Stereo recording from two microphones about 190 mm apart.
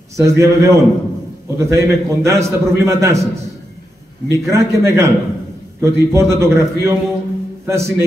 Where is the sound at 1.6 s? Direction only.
15° right (ahead or behind).